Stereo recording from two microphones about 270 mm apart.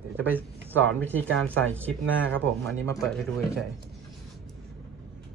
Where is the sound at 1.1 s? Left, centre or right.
Centre.